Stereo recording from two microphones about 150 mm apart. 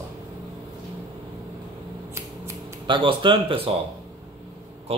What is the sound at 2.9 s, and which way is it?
Speech, 35° right (ahead or behind).